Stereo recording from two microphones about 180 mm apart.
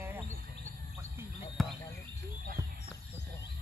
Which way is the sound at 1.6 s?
Centre (ahead or behind).